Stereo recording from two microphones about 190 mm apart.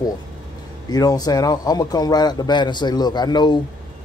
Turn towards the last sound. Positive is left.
turn(degrees=20)  # may be behind; listen again after turning